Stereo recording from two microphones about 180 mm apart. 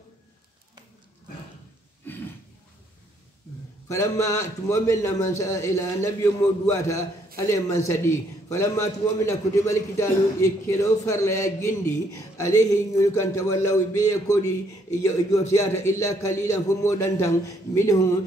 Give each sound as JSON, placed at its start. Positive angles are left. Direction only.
{"t": 3.9, "sound": "a man's voice", "side_deg": 20}